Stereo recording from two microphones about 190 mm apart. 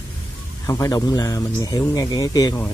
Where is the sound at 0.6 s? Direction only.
15° left (ahead or behind).